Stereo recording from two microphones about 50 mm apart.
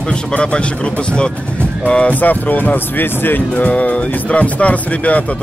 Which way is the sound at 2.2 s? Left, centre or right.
Left.